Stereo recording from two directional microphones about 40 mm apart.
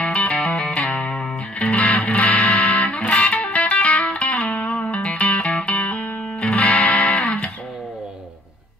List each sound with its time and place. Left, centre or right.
0.0 s music: left